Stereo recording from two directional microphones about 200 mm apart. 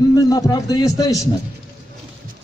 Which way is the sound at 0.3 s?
20° left (ahead or behind).